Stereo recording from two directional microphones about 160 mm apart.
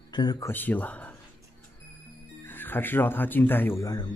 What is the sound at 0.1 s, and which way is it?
Speech, 25° left (ahead or behind).